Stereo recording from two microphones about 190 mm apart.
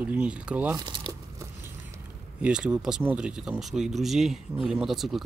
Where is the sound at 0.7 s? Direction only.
25° right (ahead or behind).